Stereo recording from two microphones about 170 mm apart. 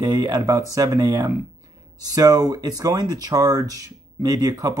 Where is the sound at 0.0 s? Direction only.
25° right (ahead or behind).